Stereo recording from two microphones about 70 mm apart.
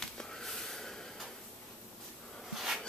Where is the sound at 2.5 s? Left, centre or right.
Centre.